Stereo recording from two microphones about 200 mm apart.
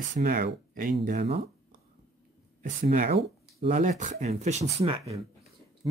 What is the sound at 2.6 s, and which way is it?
Speech, 45° right (ahead or behind).